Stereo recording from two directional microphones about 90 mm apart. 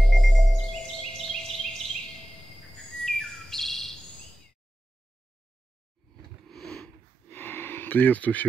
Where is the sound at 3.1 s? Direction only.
5° left (ahead or behind).